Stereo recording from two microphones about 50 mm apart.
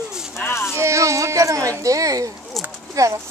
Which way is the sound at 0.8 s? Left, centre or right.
Right.